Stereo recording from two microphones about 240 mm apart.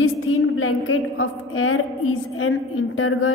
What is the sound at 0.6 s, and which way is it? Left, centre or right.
A woman's voice, left.